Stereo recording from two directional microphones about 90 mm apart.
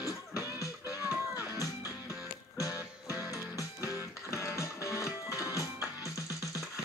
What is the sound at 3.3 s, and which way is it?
Music, 40° left (ahead or behind).